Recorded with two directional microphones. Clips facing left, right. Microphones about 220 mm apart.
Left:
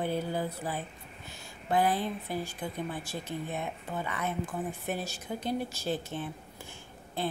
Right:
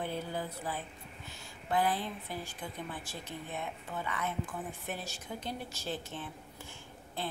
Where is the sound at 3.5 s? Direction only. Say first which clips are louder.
Left 4 dB; 45° left (ahead or behind).